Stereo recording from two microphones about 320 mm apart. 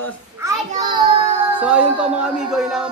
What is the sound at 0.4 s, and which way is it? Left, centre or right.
Child singing, centre.